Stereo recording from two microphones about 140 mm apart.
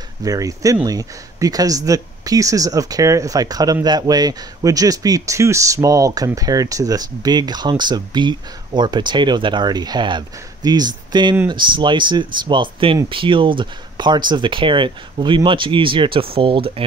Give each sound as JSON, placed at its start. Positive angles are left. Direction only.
{"t": 0.2, "sound": "speech", "side_deg": -25}